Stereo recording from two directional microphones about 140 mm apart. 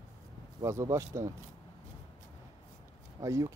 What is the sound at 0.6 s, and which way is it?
Speech, 20° right (ahead or behind).